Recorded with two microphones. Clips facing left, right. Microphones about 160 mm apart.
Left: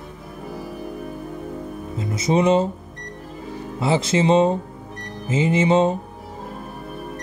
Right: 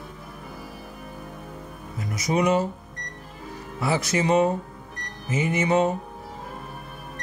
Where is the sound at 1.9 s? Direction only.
25° left (ahead or behind).